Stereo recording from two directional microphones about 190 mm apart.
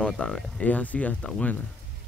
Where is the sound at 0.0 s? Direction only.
5° left (ahead or behind).